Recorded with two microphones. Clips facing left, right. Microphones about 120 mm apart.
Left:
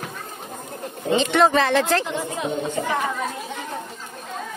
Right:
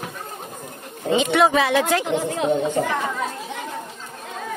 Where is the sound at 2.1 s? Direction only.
65° right (ahead or behind).